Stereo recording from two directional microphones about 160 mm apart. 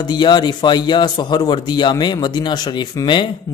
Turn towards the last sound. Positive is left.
turn(degrees=25)  # may be behind; listen again after turning